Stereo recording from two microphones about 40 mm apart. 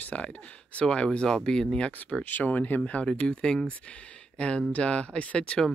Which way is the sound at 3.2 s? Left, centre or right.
Left.